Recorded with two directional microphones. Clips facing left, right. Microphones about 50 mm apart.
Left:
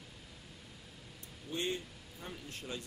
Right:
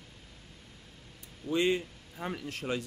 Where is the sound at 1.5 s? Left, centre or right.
Right.